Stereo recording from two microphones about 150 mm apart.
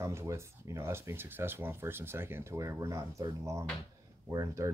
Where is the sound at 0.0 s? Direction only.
20° right (ahead or behind).